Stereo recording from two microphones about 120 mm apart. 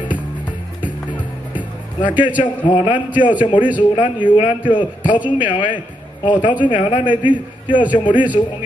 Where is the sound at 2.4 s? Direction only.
40° left (ahead or behind).